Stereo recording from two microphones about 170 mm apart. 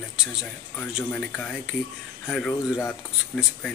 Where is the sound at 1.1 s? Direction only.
10° left (ahead or behind).